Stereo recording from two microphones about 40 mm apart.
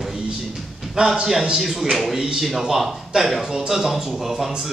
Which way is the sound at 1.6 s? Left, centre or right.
Centre.